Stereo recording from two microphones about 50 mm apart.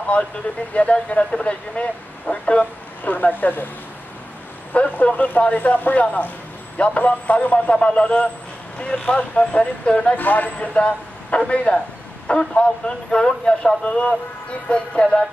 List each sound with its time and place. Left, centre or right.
0.1 s a man's voice: left
3.0 s speech: left
4.7 s a man's voice: left
10.1 s a man's voice: left